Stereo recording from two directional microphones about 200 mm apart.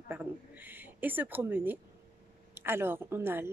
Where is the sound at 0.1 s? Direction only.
10° right (ahead or behind).